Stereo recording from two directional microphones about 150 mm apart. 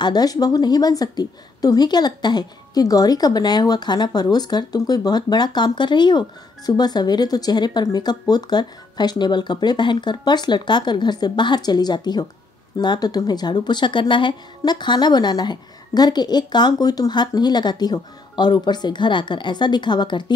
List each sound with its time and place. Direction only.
0.0 s a woman's voice: 25° left (ahead or behind)